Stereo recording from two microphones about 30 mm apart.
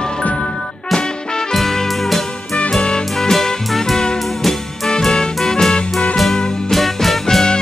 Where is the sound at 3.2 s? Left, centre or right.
Centre.